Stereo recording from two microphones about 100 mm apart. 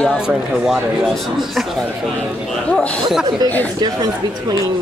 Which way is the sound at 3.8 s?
45° right (ahead or behind).